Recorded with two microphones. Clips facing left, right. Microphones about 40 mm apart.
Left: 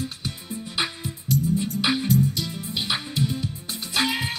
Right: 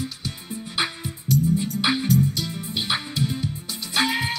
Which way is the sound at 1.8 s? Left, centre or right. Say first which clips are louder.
Right 1 dB; right.